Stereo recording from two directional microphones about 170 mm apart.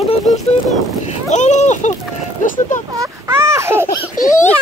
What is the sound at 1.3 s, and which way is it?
Speech, 45° left (ahead or behind).